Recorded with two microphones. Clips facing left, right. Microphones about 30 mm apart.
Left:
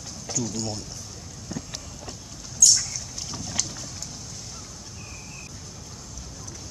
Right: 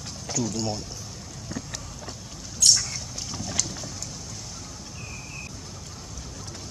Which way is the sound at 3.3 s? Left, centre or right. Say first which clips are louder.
Right 1 dB; centre.